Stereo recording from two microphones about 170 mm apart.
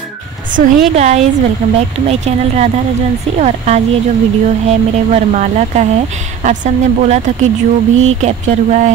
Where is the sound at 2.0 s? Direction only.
40° right (ahead or behind).